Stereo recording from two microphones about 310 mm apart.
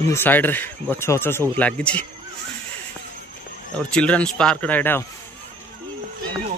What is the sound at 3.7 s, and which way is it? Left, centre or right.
Speech, centre.